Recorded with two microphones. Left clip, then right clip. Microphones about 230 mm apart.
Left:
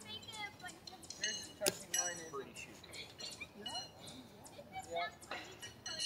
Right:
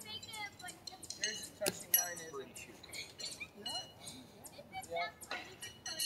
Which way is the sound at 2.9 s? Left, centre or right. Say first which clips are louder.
Right 5 dB; right.